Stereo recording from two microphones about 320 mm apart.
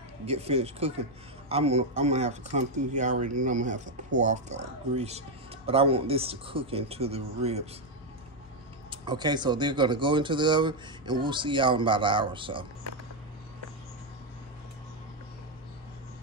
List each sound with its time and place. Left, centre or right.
0.3 s speech: centre
8.9 s speech: centre